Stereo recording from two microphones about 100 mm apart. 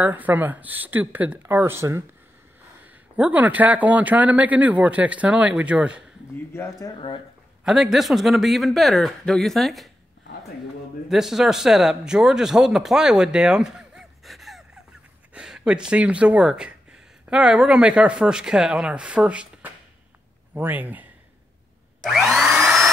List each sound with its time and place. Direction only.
0.0 s speech: 15° right (ahead or behind)
3.2 s speech: 15° right (ahead or behind)
6.5 s speech: 25° left (ahead or behind)
7.6 s speech: 5° right (ahead or behind)
11.1 s speech: 5° right (ahead or behind)
22.0 s vacuum cleaner: centre (ahead or behind)